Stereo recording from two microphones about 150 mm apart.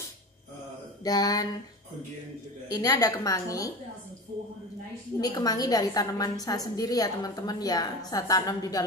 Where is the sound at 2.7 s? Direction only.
25° left (ahead or behind).